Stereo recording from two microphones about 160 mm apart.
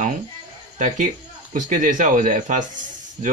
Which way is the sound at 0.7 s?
50° right (ahead or behind).